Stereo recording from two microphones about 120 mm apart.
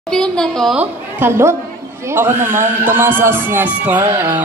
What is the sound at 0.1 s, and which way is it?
Speech, 5° left (ahead or behind).